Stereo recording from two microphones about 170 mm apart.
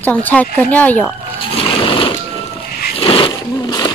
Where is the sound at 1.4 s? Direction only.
30° left (ahead or behind).